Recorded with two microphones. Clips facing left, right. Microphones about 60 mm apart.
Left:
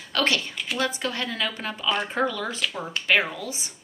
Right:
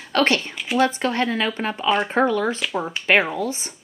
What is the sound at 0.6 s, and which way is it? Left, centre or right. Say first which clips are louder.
Speech: right 8 dB; centre.